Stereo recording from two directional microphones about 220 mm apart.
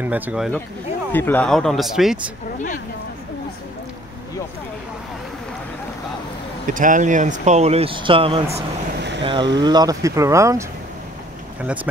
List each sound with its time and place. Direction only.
0.0 s speech: 10° right (ahead or behind)
1.1 s speech: 10° left (ahead or behind)
6.7 s speech: 35° right (ahead or behind); by 10.6 s 15° right (ahead or behind)
11.6 s speech: 5° right (ahead or behind)